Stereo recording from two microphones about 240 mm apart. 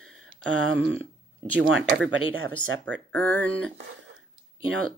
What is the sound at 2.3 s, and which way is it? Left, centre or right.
Speech, right.